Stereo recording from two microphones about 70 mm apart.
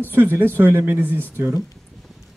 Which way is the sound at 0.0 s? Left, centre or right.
Right.